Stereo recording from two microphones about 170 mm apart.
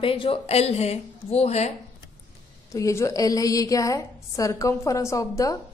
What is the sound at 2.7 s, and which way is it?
A woman's voice, 20° left (ahead or behind).